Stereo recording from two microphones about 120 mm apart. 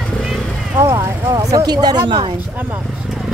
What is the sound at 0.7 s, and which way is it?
Speech, 30° right (ahead or behind).